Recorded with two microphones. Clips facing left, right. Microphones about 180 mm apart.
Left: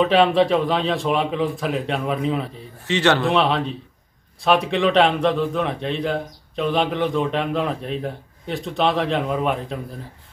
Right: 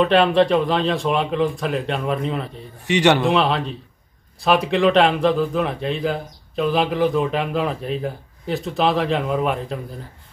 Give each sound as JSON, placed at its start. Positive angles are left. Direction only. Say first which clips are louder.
{"t": 0.0, "sound": "a man's voice", "louder": "right 1 dB", "side_deg": 0}
{"t": 2.9, "sound": "a man's voice", "louder": "right 2 dB", "side_deg": -15}
{"t": 3.3, "sound": "a man's voice", "louder": "even", "side_deg": 0}